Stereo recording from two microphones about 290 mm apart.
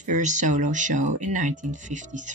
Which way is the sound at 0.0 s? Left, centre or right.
Right.